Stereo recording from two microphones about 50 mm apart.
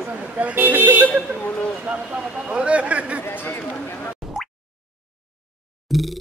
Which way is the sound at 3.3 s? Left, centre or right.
Left.